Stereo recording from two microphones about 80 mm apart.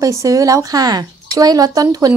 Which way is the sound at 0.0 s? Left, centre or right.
Right.